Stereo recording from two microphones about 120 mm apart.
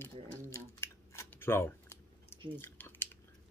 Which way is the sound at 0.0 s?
20° left (ahead or behind).